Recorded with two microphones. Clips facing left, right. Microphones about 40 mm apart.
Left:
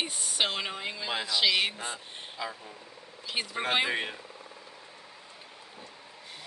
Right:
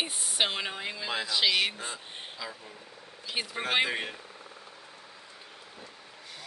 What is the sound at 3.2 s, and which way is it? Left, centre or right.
Speech, centre.